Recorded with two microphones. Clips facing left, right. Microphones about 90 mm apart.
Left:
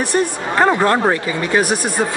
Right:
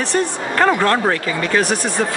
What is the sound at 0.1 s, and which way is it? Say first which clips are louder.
Speech: left 2 dB; 15° left (ahead or behind).